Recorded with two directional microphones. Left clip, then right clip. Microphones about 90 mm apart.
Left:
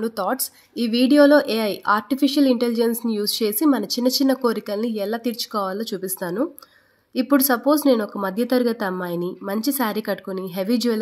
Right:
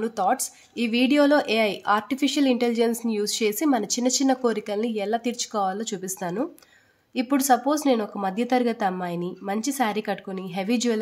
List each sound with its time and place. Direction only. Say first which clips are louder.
0.0 s speech: even; 15° left (ahead or behind)